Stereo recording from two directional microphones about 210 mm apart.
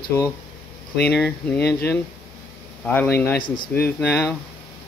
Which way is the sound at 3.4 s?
20° left (ahead or behind).